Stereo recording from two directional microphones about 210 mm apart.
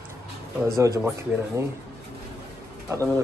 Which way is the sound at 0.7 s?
15° right (ahead or behind).